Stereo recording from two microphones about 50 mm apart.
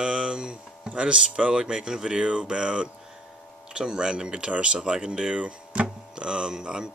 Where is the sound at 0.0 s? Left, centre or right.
Centre.